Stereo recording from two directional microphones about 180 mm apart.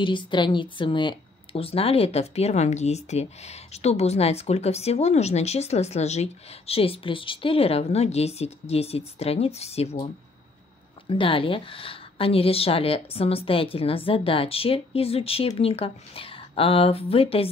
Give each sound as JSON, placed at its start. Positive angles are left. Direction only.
{"t": 0.0, "sound": "speech", "side_deg": 25}